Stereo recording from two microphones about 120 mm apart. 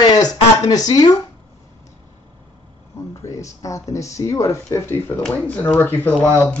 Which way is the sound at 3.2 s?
25° left (ahead or behind).